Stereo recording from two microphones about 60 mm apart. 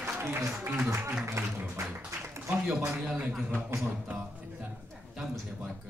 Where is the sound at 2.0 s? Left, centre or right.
Right.